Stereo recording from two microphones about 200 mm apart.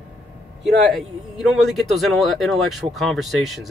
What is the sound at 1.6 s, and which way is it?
Speech, centre (ahead or behind).